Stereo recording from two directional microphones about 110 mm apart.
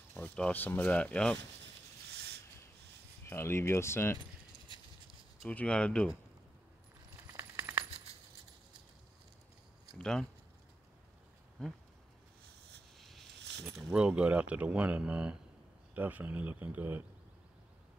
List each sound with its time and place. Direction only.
0.1 s speech: 15° left (ahead or behind)
3.3 s speech: 25° left (ahead or behind)
5.5 s speech: 10° left (ahead or behind)
7.3 s coin: 20° right (ahead or behind)
9.9 s speech: 5° left (ahead or behind)
12.9 s a sound: centre (ahead or behind)
13.9 s speech: 10° right (ahead or behind)